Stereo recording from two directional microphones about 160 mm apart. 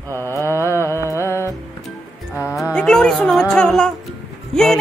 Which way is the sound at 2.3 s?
10° right (ahead or behind).